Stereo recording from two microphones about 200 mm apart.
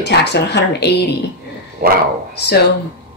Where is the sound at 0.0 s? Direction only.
60° left (ahead or behind).